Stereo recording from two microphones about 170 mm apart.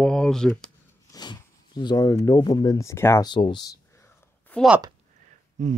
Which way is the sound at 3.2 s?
25° left (ahead or behind).